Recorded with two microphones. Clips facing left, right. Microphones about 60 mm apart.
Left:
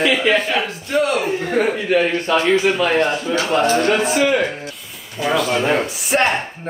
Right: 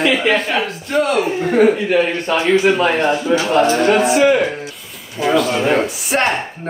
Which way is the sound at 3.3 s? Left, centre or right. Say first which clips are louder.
Right 4 dB; right.